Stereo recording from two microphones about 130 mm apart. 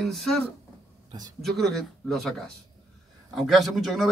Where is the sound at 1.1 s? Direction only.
30° right (ahead or behind).